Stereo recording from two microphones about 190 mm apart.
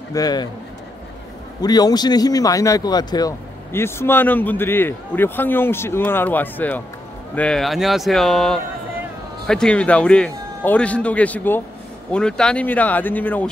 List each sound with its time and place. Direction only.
0.1 s a man's voice: 20° left (ahead or behind)
1.6 s speech: 20° left (ahead or behind)